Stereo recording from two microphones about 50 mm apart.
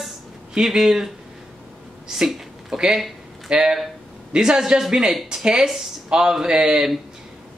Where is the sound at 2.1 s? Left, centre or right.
Centre.